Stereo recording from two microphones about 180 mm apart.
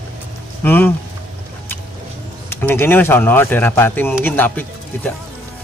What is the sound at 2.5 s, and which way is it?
Speech, 10° left (ahead or behind).